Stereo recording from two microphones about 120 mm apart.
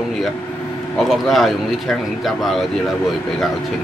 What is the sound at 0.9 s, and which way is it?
Speech, centre (ahead or behind).